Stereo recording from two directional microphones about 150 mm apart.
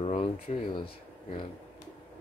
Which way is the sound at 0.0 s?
45° left (ahead or behind).